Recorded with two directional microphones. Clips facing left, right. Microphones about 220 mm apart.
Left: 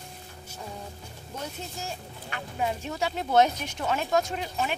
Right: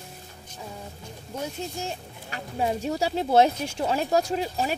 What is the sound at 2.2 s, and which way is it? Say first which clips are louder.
Speech: right 3 dB; 35° right (ahead or behind).